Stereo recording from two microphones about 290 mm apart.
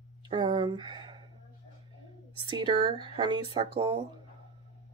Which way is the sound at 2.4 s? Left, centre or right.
Centre.